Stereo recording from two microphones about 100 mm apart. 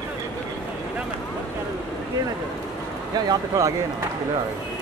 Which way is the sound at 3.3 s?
30° right (ahead or behind).